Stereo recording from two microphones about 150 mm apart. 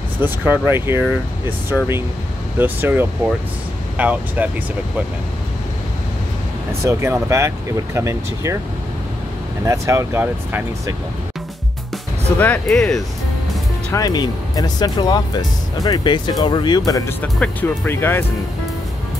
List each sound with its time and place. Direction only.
0.2 s speech: 15° right (ahead or behind)
2.6 s speech: 15° right (ahead or behind)
6.8 s speech: 20° right (ahead or behind)
9.7 s speech: 20° right (ahead or behind)
12.4 s speech: 5° left (ahead or behind)
13.9 s speech: 25° left (ahead or behind)
17.2 s speech: 10° left (ahead or behind)